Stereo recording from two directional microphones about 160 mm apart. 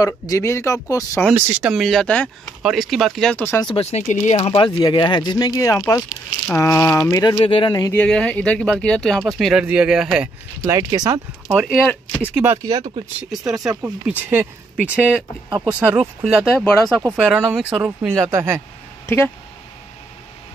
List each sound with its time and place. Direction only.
0.0 s speech: 20° left (ahead or behind)
1.3 s speech: 5° right (ahead or behind); by 3.6 s 10° left (ahead or behind)
3.6 s speech: 40° left (ahead or behind); by 8.0 s 25° left (ahead or behind)
8.0 s speech: 5° left (ahead or behind)
10.7 s speech: 20° right (ahead or behind)
11.6 s speech: centre (ahead or behind)
12.2 s speech: 10° right (ahead or behind)
12.6 s speech: 30° right (ahead or behind)
13.7 s speech: 10° right (ahead or behind)
16.3 s speech: 5° left (ahead or behind)
17.3 s speech: 5° right (ahead or behind)
18.3 s speech: 15° right (ahead or behind)
19.0 s speech: 10° left (ahead or behind)